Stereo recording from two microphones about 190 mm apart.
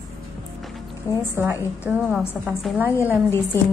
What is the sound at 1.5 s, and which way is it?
Speech, 15° left (ahead or behind).